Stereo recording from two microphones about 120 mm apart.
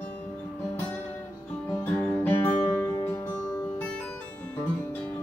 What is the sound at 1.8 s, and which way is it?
Music, 15° left (ahead or behind).